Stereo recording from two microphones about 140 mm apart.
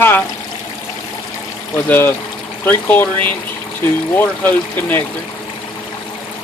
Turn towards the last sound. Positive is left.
turn(degrees=10)  # may be behind; listen again after turning